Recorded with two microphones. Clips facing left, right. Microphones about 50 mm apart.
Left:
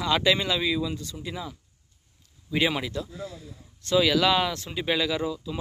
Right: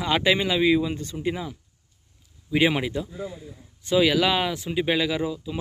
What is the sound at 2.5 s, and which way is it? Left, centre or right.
Speech, centre.